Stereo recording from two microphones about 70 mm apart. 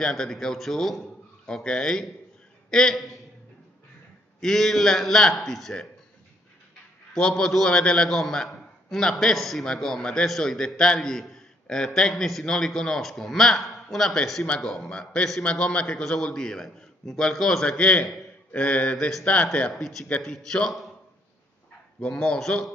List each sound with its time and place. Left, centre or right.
0.0 s a man's voice: centre
4.4 s a man's voice: centre
7.2 s a man's voice: centre
19.7 s a man's voice: centre
22.0 s a man's voice: centre